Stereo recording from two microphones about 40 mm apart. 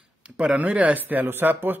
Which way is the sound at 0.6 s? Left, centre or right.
Right.